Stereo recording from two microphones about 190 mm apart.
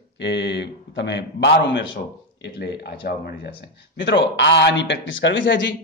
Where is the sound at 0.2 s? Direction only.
65° left (ahead or behind).